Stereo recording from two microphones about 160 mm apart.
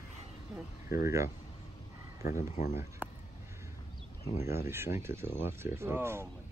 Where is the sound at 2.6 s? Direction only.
45° left (ahead or behind).